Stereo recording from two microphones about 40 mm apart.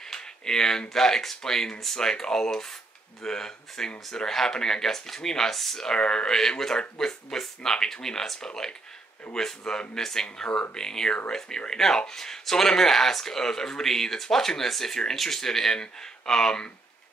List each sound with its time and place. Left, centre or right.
0.1 s speech: centre
5.9 s speech: left